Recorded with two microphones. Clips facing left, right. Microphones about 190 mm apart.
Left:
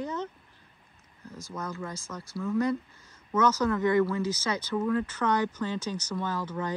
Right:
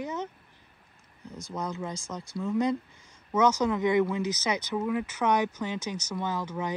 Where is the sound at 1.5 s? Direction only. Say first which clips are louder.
Right 2 dB; 20° right (ahead or behind).